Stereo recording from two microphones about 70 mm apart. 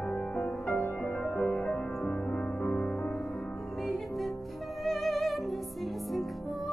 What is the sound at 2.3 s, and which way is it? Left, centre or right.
Music, centre.